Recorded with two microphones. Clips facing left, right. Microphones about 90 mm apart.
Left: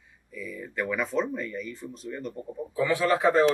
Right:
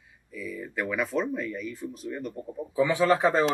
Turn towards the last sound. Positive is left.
turn(degrees=-20)  # may be behind; listen again after turning